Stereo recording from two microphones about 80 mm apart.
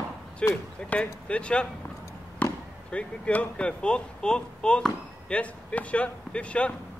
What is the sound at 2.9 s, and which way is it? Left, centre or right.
Speech, centre.